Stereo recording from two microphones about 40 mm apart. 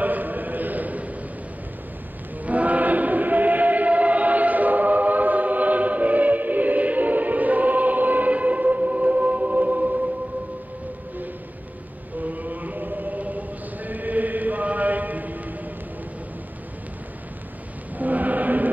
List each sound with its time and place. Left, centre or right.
0.0 s a sound: right
2.4 s chant: right
12.2 s chant: right
17.9 s chant: right